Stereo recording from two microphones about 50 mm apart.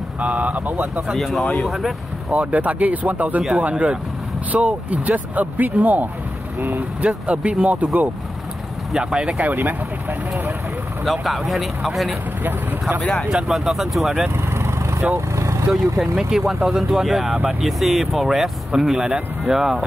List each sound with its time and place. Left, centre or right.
0.2 s speech: right
1.1 s speech: centre
2.2 s speech: right
3.7 s speech: right
8.9 s speech: centre
9.4 s speech: right
11.1 s speech: centre
13.0 s speech: left
13.5 s speech: centre
14.3 s vehicle: right
15.1 s vehicle: right
16.0 s speech: centre
18.9 s speech: centre
19.5 s speech: centre